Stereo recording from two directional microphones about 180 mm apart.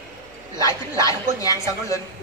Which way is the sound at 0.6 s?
20° left (ahead or behind).